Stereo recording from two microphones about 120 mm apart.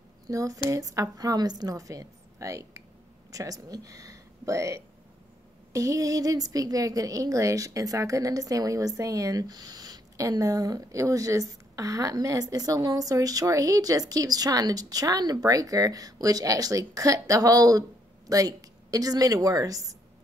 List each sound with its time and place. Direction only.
0.3 s a woman's voice: 30° right (ahead or behind)